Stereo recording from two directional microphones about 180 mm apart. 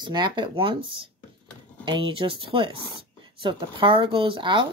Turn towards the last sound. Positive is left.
turn(degrees=-30)  # may be behind; listen again after turning